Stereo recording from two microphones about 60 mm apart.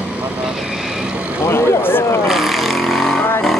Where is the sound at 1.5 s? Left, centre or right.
Left.